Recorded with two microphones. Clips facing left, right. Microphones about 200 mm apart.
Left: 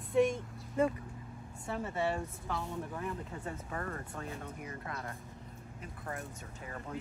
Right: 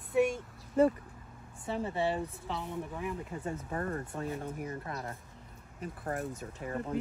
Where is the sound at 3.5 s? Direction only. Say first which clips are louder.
Right 5 dB; 30° right (ahead or behind).